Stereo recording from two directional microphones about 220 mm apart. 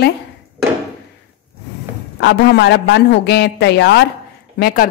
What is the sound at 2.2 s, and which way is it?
A woman's voice, 50° left (ahead or behind).